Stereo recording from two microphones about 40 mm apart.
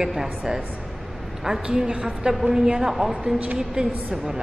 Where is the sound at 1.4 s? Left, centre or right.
Centre.